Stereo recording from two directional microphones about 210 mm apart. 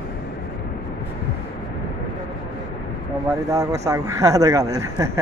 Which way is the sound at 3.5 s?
15° right (ahead or behind).